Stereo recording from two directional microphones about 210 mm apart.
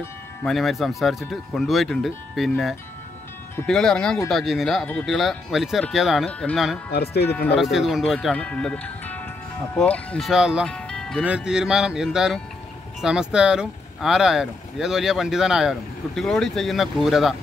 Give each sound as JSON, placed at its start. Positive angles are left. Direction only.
{"t": 0.4, "sound": "speech", "side_deg": 0}
{"t": 6.9, "sound": "speech", "side_deg": 50}
{"t": 7.2, "sound": "speech", "side_deg": 5}